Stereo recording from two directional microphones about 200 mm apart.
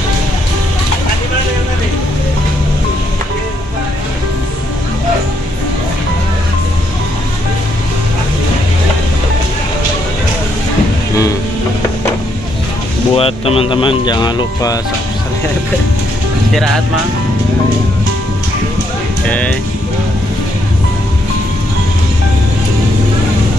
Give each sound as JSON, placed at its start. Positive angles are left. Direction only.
{"t": 13.1, "sound": "speech", "side_deg": 30}
{"t": 19.2, "sound": "music", "side_deg": 5}